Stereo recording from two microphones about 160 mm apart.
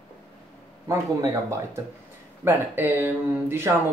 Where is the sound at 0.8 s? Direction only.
20° right (ahead or behind).